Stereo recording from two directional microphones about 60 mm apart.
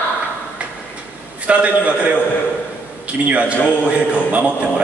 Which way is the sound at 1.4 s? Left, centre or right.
Right.